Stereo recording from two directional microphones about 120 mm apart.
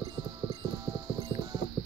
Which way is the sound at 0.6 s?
35° right (ahead or behind).